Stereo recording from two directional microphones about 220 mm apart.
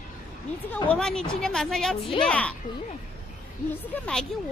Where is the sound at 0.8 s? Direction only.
5° left (ahead or behind).